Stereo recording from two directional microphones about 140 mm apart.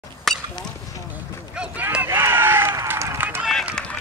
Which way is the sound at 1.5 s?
5° right (ahead or behind).